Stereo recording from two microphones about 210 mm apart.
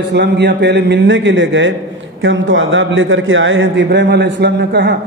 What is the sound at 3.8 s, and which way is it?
A man's voice, 55° right (ahead or behind).